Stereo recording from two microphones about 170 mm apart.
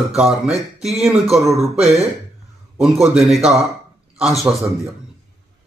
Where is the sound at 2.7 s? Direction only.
Centre (ahead or behind).